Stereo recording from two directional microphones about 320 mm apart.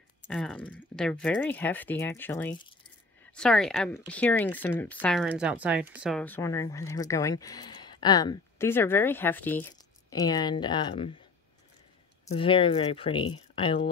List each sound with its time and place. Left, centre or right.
0.3 s speech: centre
12.3 s speech: centre